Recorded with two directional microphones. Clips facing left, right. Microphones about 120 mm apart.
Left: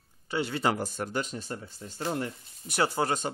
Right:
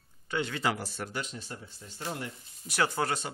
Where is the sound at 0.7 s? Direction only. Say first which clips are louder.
Left 5 dB; 45° left (ahead or behind).